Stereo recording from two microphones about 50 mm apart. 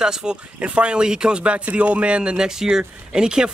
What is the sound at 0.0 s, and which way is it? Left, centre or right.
Speech, centre.